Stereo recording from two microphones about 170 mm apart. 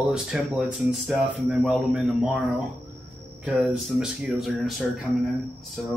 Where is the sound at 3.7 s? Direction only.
5° right (ahead or behind).